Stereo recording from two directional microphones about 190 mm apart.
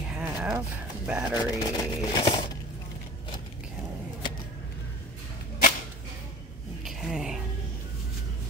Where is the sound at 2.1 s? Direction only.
25° left (ahead or behind).